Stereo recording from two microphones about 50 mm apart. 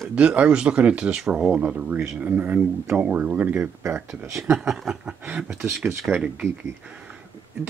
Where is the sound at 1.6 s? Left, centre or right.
Right.